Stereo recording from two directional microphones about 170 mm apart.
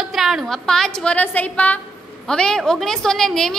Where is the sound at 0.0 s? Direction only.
Centre (ahead or behind).